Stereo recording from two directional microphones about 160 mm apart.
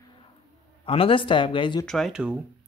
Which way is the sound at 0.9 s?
35° left (ahead or behind).